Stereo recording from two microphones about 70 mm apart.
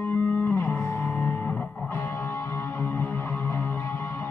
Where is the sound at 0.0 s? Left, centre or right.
Left.